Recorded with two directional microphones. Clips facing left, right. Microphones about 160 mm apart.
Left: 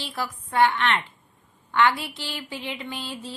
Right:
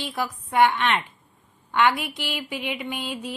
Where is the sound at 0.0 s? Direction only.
15° right (ahead or behind).